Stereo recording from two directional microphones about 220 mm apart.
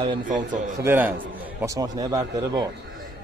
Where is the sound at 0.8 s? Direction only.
10° right (ahead or behind).